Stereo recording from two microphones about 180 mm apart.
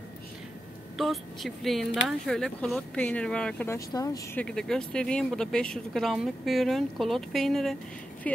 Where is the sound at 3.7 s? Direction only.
20° left (ahead or behind).